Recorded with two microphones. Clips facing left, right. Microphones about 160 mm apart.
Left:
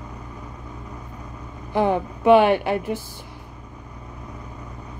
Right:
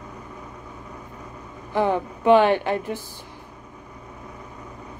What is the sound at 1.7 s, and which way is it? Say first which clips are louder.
Speech: left 1 dB; 15° left (ahead or behind).